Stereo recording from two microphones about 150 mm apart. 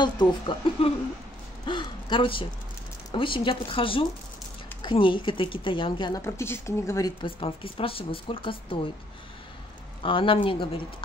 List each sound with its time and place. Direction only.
0.0 s speech: 30° left (ahead or behind)
6.2 s speech: 15° left (ahead or behind)
7.2 s speech: 35° left (ahead or behind)
10.0 s speech: 35° left (ahead or behind)